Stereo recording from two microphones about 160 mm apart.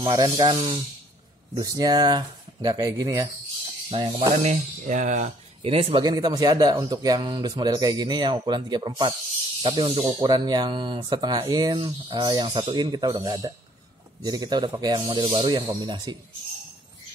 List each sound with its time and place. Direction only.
0.0 s speech: 25° right (ahead or behind)
0.6 s speech: 35° right (ahead or behind)
1.5 s speech: 25° right (ahead or behind)
3.9 s speech: 35° right (ahead or behind)
4.4 s speech: 45° right (ahead or behind)
5.6 s speech: 35° right (ahead or behind)
6.0 s speech: 25° right (ahead or behind)